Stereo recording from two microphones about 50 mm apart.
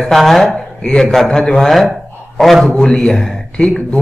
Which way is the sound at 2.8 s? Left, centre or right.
Centre.